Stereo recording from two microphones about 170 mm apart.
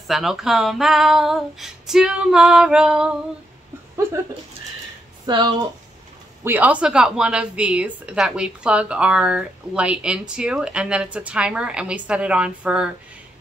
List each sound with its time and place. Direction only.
0.1 s a woman's voice: centre (ahead or behind)
5.2 s speech: 25° right (ahead or behind)
6.4 s a woman's voice: 10° right (ahead or behind)